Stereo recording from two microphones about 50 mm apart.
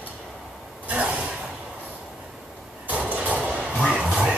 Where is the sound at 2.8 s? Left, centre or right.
Right.